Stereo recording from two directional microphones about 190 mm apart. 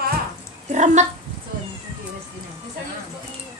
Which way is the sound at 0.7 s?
40° right (ahead or behind).